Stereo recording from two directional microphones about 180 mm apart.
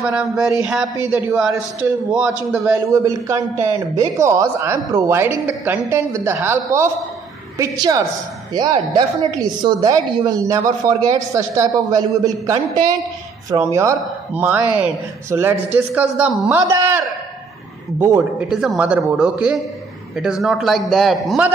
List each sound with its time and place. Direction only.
0.0 s a man's voice: 5° right (ahead or behind)
18.5 s a man's voice: 5° right (ahead or behind)